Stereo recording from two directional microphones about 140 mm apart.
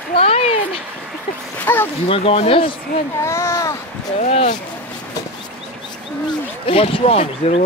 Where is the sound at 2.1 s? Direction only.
45° left (ahead or behind).